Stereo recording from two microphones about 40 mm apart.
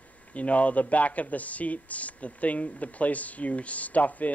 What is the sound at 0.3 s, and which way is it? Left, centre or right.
Speech, left.